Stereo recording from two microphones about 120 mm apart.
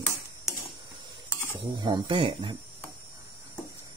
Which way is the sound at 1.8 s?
40° right (ahead or behind).